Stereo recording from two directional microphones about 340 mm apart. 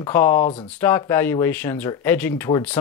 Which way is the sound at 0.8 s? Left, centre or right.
Centre.